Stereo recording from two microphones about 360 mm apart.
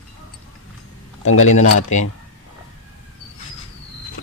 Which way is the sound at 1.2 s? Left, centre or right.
Left.